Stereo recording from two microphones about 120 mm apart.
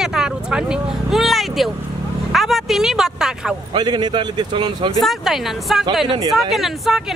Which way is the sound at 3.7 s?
35° right (ahead or behind).